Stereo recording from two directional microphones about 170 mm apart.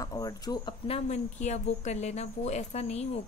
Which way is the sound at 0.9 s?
45° left (ahead or behind).